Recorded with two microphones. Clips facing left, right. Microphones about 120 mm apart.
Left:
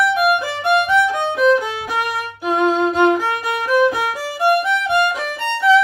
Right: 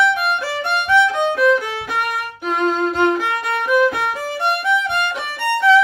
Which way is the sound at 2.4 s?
10° left (ahead or behind).